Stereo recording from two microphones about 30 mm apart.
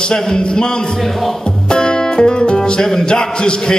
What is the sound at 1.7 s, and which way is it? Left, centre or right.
Music, left.